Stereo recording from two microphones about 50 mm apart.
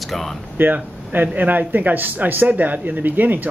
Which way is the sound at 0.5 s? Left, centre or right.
Right.